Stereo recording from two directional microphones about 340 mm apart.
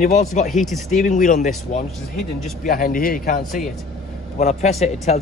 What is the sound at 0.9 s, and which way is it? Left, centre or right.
Speech, left.